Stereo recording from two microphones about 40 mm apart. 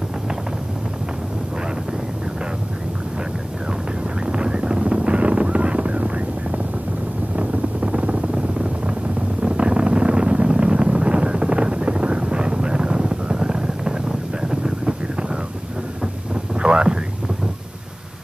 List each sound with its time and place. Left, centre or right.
4.3 s music: right
7.3 s vehicle: right
16.6 s a sound: right